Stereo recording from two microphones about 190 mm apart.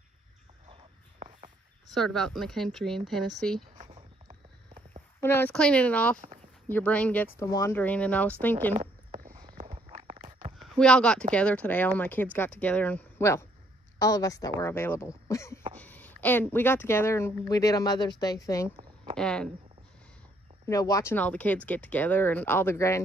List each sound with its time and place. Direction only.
1.9 s speech: centre (ahead or behind)
3.7 s a sound: 40° right (ahead or behind)
5.2 s speech: 10° left (ahead or behind)
8.7 s a sound: 45° right (ahead or behind)
9.3 s walk: 20° right (ahead or behind)
9.7 s a sound: 30° right (ahead or behind)
10.6 s speech: centre (ahead or behind)
19.1 s speech: 5° left (ahead or behind)
20.6 s speech: 20° left (ahead or behind)